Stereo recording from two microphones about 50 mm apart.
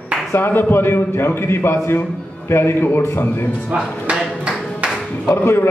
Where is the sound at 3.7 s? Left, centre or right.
Right.